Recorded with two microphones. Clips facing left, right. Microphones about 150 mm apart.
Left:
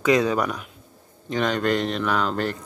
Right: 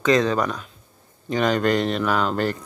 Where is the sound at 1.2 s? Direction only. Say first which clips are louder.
Right 2 dB; centre (ahead or behind).